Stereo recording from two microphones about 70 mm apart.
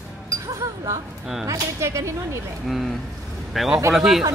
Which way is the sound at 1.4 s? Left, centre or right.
Right.